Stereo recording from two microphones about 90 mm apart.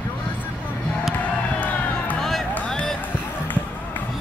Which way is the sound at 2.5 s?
10° left (ahead or behind).